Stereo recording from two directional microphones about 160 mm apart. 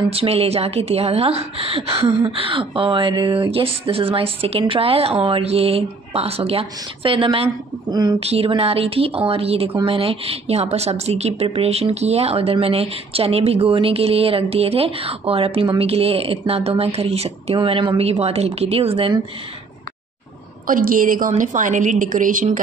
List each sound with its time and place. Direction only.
0.1 s a woman's voice: 40° right (ahead or behind)
8.2 s a woman's voice: 35° right (ahead or behind)
20.6 s a woman's voice: 60° right (ahead or behind)